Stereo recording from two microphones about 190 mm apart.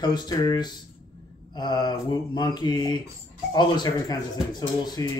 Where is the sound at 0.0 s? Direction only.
20° left (ahead or behind).